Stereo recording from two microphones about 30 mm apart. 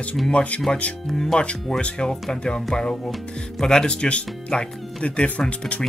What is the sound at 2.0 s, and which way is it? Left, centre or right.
Speech, left.